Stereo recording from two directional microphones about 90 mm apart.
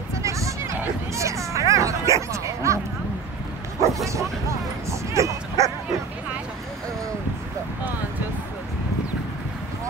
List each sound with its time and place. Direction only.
0.2 s a sound: 35° right (ahead or behind)
1.1 s bow-wow: 35° right (ahead or behind)
3.8 s bow-wow: 35° right (ahead or behind)